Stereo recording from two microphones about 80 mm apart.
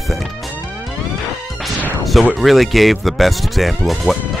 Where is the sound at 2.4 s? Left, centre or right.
Centre.